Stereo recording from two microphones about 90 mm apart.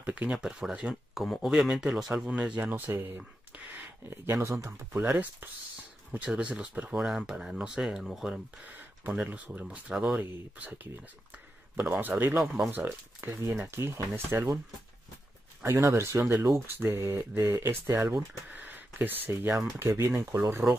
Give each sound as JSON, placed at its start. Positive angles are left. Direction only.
{"t": 0.0, "sound": "speech", "side_deg": -15}
{"t": 3.2, "sound": "a sound", "side_deg": -15}
{"t": 4.1, "sound": "speech", "side_deg": -30}
{"t": 8.6, "sound": "speech", "side_deg": -20}
{"t": 12.3, "sound": "speech", "side_deg": -5}
{"t": 12.7, "sound": "speech", "side_deg": -25}
{"t": 15.6, "sound": "speech", "side_deg": -35}
{"t": 18.6, "sound": "speech", "side_deg": -20}